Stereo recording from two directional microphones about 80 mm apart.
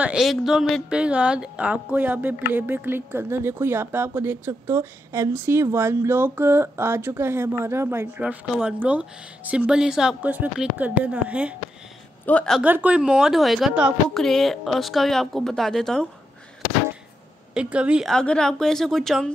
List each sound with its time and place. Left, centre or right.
0.2 s speech: centre
0.8 s speech: centre; by 8.1 s right
8.2 s a woman's voice: centre
10.2 s a woman's voice: right
12.3 s speech: left
12.6 s a woman's voice: right; by 16.1 s centre
17.6 s a woman's voice: centre
18.0 s speech: centre